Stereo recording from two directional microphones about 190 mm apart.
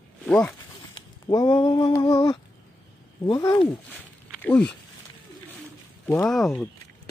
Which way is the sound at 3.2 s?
20° left (ahead or behind).